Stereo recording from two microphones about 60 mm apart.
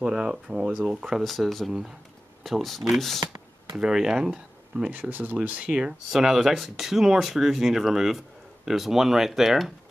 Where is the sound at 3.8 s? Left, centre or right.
Centre.